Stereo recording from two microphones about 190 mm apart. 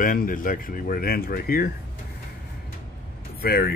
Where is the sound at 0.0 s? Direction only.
45° left (ahead or behind).